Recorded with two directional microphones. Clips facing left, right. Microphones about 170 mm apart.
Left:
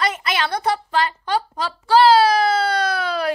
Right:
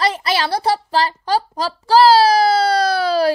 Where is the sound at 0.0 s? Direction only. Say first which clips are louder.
Right 3 dB; 35° right (ahead or behind).